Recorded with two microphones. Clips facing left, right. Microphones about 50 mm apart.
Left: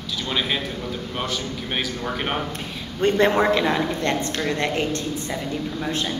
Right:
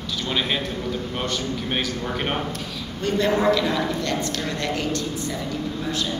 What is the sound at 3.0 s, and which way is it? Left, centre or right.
A woman's voice, left.